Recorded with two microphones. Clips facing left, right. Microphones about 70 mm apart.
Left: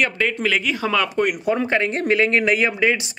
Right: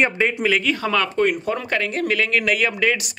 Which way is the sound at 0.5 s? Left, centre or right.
Centre.